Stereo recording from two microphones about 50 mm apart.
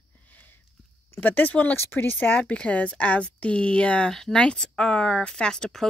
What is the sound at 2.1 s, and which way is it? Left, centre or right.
Speech, left.